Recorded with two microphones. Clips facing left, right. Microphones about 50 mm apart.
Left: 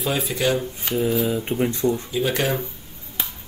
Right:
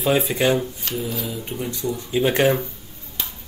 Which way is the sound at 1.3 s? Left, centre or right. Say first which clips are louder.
Left 6 dB; left.